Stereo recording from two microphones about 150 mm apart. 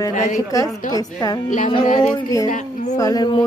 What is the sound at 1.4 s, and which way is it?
Speech, 55° left (ahead or behind).